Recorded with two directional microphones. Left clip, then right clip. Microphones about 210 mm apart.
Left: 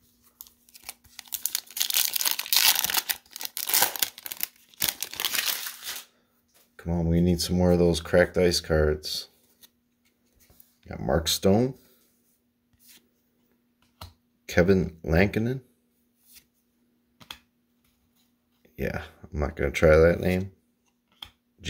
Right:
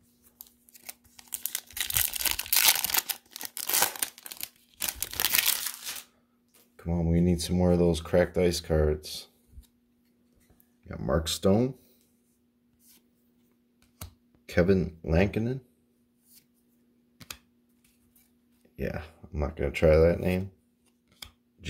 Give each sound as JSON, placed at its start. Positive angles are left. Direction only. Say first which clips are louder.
{"t": 1.4, "sound": "a sound", "louder": "left 4 dB", "side_deg": 0}
{"t": 5.1, "sound": "crumpling", "louder": "right 5 dB", "side_deg": -40}
{"t": 6.8, "sound": "speech", "louder": "left 2 dB", "side_deg": 5}
{"t": 10.9, "sound": "speech", "louder": "left 4 dB", "side_deg": 5}
{"t": 14.4, "sound": "speech", "louder": "left 3 dB", "side_deg": 10}
{"t": 18.8, "sound": "speech", "louder": "left 3 dB", "side_deg": 10}